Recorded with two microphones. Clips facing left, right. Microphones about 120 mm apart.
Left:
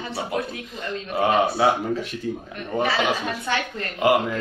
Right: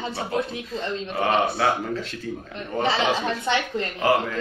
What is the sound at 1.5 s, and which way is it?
Speech, 20° left (ahead or behind).